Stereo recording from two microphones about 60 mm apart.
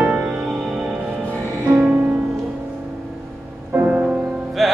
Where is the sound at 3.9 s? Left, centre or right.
Centre.